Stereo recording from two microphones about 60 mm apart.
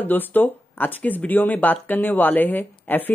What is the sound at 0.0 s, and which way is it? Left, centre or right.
Speech, left.